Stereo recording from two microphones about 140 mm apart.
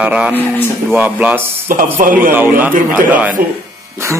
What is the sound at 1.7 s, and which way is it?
Speech, 85° right.